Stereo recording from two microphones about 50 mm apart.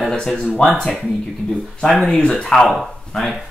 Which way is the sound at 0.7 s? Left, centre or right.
Centre.